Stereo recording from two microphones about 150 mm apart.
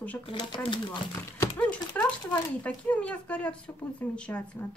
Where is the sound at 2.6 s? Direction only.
10° left (ahead or behind).